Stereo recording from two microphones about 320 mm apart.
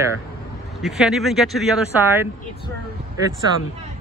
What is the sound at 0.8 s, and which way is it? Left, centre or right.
Speech, centre.